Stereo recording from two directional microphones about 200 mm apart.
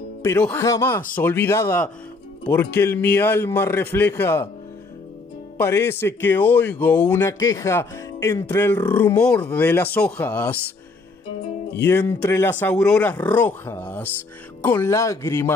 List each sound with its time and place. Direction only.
0.2 s speech: 10° left (ahead or behind)
5.6 s speech: 10° left (ahead or behind)
11.7 s speech: 10° left (ahead or behind)